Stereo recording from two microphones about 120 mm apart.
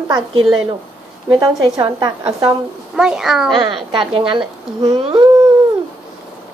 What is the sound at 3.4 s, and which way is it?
Speech, 40° right (ahead or behind).